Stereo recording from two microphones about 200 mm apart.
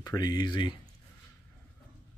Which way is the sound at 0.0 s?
20° left (ahead or behind).